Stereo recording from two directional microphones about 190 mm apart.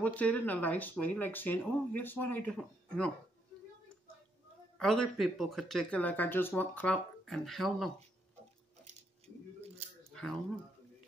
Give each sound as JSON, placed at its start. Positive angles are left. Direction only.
{"t": 0.0, "sound": "speech", "side_deg": 10}
{"t": 4.7, "sound": "speech", "side_deg": 0}
{"t": 8.8, "sound": "squish", "side_deg": -35}